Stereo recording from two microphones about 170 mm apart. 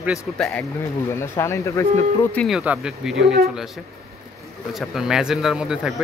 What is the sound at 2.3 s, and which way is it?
Speech, centre (ahead or behind).